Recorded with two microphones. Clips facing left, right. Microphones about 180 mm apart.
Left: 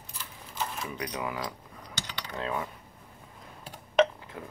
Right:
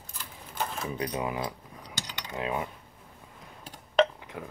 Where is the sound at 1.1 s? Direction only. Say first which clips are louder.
Right 3 dB; 20° right (ahead or behind).